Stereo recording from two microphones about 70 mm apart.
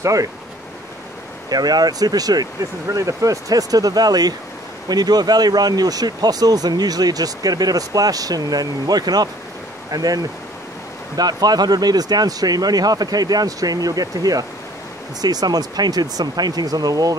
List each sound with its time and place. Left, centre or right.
0.0 s speech: right
1.5 s speech: right
2.6 s speech: right